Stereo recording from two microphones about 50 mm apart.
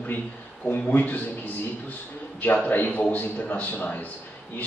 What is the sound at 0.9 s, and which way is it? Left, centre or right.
Speech, left.